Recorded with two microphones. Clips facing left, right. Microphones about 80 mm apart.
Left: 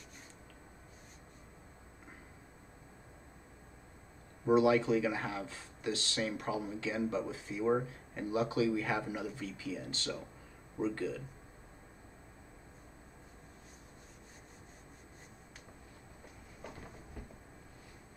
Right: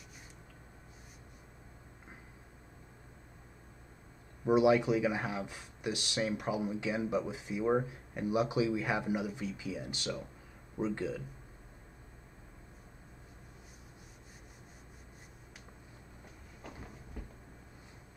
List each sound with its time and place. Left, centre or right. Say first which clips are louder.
4.5 s speech: right 1 dB; centre